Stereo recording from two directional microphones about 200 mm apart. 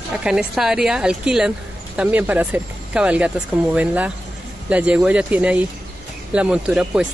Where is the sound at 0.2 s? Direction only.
5° right (ahead or behind).